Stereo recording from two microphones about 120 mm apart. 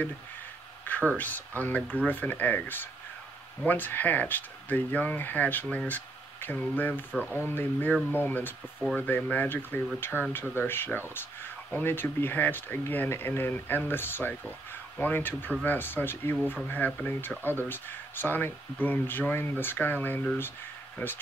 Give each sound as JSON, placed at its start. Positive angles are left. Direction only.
{"t": 1.1, "sound": "speech", "side_deg": 15}